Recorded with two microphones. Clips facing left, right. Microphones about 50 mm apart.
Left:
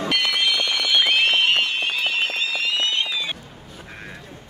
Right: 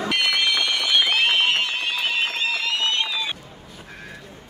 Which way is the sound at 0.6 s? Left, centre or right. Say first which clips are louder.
Left 1 dB; right.